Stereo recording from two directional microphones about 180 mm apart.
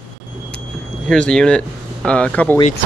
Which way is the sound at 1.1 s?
5° left (ahead or behind).